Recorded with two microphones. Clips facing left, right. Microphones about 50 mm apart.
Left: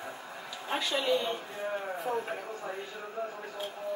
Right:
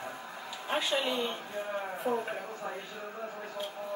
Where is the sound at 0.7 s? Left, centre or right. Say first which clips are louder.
Left 2 dB; centre.